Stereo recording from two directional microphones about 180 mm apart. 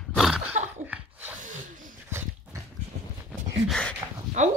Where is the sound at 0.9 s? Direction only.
10° right (ahead or behind).